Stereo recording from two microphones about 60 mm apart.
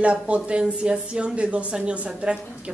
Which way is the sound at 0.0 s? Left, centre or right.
Right.